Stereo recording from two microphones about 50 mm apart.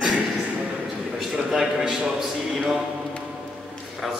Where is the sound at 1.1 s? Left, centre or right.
Centre.